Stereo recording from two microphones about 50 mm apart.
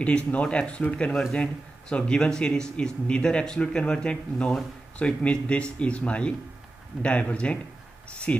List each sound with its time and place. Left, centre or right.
0.0 s a man's voice: left